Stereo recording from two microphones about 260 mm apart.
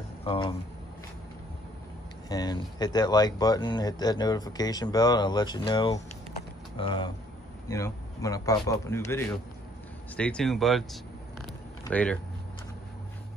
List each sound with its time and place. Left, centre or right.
0.2 s speech: centre
2.2 s speech: centre